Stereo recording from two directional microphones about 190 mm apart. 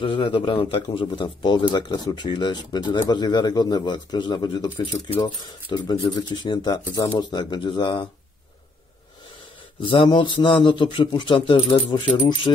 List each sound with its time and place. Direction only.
0.0 s speech: 25° left (ahead or behind)
9.8 s speech: 25° left (ahead or behind)